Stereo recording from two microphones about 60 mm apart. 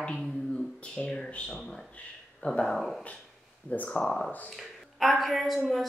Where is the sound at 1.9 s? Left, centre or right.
Centre.